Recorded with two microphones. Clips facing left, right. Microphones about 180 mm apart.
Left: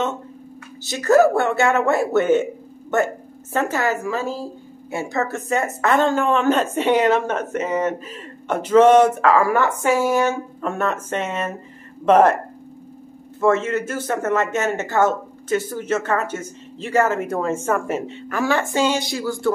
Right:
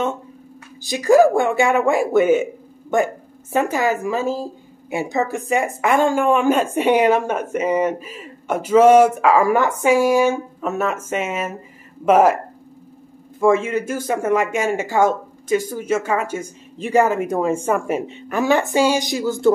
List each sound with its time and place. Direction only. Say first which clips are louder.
0.8 s a woman's voice: right 2 dB; 15° right (ahead or behind)
13.4 s a woman's voice: right 2 dB; 10° right (ahead or behind)